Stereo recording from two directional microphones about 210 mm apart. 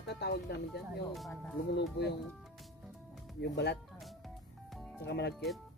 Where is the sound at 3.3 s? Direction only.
55° left (ahead or behind).